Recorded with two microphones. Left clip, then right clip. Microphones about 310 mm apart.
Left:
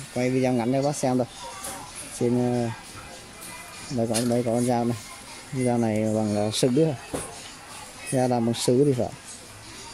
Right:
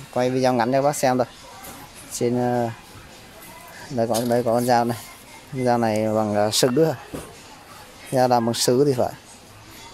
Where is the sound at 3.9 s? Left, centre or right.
Right.